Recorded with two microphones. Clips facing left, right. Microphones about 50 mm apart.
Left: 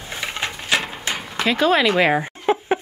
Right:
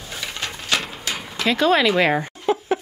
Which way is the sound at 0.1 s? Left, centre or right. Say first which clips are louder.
Left 3 dB; left.